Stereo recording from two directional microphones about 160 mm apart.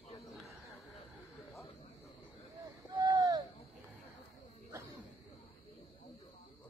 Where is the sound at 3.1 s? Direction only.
25° right (ahead or behind).